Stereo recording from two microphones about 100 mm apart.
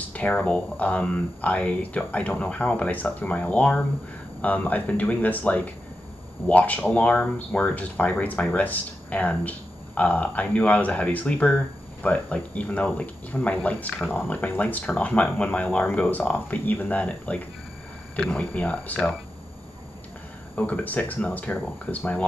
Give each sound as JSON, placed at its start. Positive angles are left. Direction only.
{"t": 0.1, "sound": "speech", "side_deg": 15}
{"t": 20.5, "sound": "speech", "side_deg": 15}